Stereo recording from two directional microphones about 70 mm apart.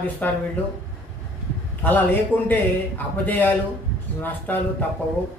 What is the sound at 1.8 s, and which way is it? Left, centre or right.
Speech, left.